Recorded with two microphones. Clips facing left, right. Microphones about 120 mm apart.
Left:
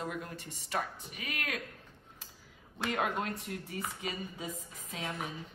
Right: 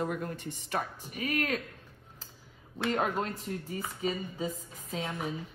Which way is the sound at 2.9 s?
35° right (ahead or behind).